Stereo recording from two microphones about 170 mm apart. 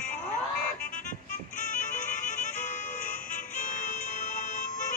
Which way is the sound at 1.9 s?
45° left (ahead or behind).